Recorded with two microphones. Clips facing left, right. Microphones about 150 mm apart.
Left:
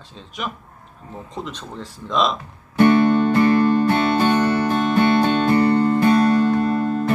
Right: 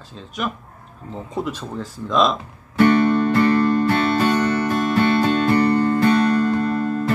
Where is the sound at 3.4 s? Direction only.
15° left (ahead or behind).